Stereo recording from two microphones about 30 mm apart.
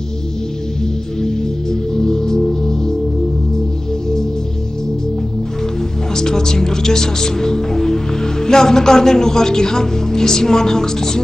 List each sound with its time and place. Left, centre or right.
1.2 s music: centre
6.1 s speech: centre